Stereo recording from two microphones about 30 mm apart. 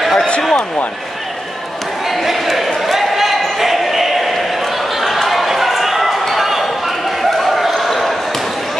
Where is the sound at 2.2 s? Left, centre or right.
Centre.